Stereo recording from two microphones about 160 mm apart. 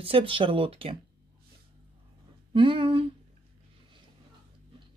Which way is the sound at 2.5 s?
30° right (ahead or behind).